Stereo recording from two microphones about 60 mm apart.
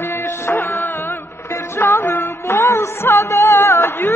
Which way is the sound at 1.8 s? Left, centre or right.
Left.